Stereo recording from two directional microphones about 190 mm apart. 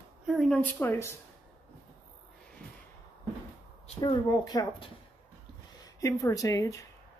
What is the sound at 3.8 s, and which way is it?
Speech, 25° left (ahead or behind).